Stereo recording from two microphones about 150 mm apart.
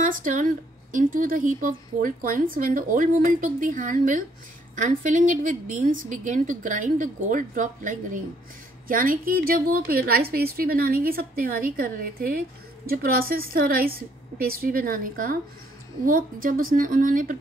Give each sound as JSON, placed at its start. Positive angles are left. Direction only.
{"t": 0.0, "sound": "a woman's voice", "side_deg": -60}